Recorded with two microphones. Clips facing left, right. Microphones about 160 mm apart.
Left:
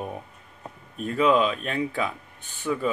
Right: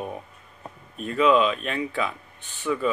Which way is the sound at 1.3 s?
40° left (ahead or behind).